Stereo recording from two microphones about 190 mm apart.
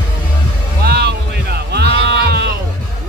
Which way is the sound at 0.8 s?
60° right (ahead or behind).